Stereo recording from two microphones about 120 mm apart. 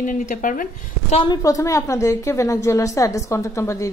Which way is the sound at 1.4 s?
25° left (ahead or behind).